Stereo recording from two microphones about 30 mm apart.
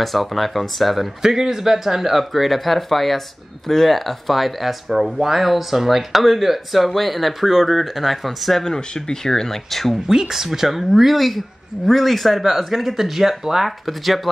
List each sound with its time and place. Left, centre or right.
0.0 s speech: centre
1.2 s speech: centre
8.5 s speech: centre
10.0 s speech: centre
12.4 s speech: centre